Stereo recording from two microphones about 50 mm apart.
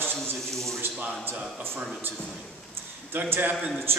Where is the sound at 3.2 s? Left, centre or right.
Right.